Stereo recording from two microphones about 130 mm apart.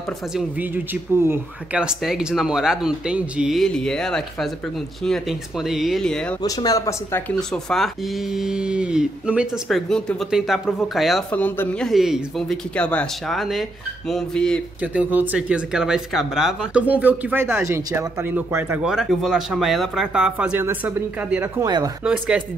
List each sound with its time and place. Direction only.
1.2 s speech: 20° right (ahead or behind)
1.8 s speech: 5° right (ahead or behind)
6.4 s speech: 25° left (ahead or behind)
7.5 s speech: centre (ahead or behind)
11.3 s speech: 15° left (ahead or behind)
11.9 s speech: centre (ahead or behind)
14.8 s speech: 10° right (ahead or behind)
18.8 s speech: centre (ahead or behind)
21.5 s speech: 30° right (ahead or behind)
22.0 s speech: 5° right (ahead or behind)